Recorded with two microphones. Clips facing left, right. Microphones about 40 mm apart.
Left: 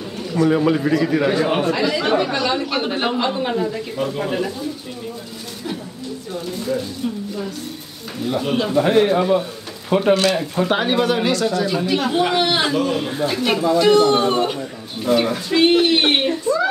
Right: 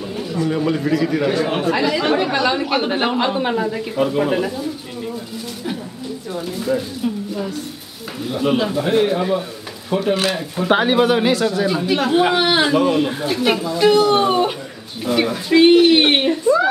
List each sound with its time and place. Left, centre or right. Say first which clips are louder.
0.5 s a man's voice: left 2 dB; centre
1.7 s speech: right 1 dB; centre
8.5 s a man's voice: right 1 dB; centre
10.3 s a man's voice: left 3 dB; centre
10.7 s a man's voice: right 5 dB; centre